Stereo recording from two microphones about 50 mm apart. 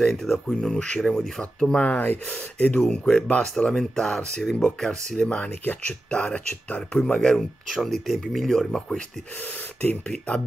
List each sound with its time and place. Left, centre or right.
0.0 s speech: centre
1.9 s speech: left
2.9 s speech: centre
5.3 s speech: left
7.1 s speech: centre
7.3 s speech: centre
9.8 s speech: left